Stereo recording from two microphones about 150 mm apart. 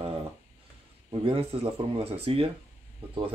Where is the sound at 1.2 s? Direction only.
40° right (ahead or behind).